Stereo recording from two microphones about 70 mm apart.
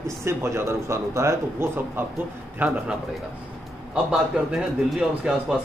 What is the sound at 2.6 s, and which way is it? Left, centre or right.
Speech, right.